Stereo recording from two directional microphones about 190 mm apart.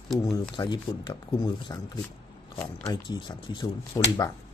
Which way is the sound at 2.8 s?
20° left (ahead or behind).